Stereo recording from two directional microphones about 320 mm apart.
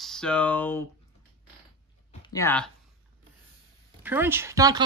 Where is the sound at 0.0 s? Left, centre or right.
Centre.